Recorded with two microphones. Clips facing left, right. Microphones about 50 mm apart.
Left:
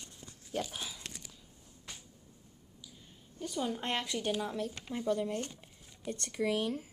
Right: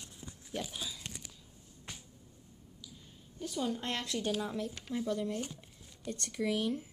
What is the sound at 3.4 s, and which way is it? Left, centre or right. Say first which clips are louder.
Speech: even; centre.